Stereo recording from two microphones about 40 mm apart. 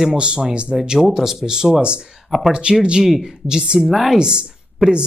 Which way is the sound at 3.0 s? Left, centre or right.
Centre.